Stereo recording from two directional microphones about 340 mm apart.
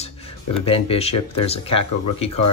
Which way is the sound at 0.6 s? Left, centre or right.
Centre.